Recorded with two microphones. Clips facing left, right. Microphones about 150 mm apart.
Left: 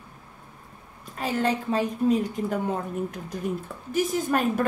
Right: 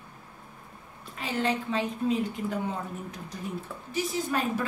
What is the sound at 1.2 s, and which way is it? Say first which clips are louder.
A woman's voice: left 3 dB; 45° left (ahead or behind).